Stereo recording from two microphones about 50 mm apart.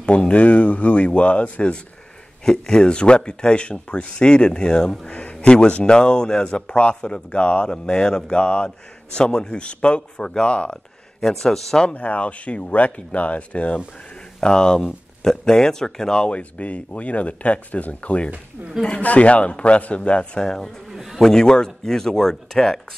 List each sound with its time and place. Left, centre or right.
0.0 s speech: left
2.4 s a man's voice: centre
11.1 s speech: centre
11.9 s speech: left
14.4 s speech: centre
20.4 s speech: centre
20.9 s a sound: centre
21.2 s speech: centre